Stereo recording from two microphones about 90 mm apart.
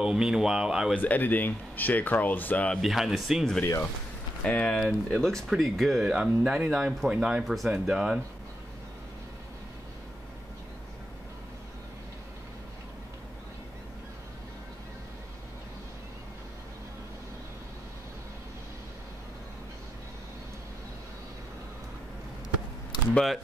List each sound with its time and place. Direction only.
0.0 s speech: 5° right (ahead or behind)
1.0 s speech: 20° left (ahead or behind)
2.8 s speech: 5° right (ahead or behind)
4.4 s speech: 15° left (ahead or behind); by 8.2 s 5° right (ahead or behind)
22.9 s a sound: 50° left (ahead or behind)